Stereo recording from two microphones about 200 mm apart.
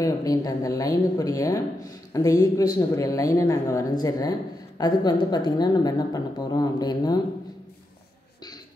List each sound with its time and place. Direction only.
0.0 s a woman's voice: 20° left (ahead or behind)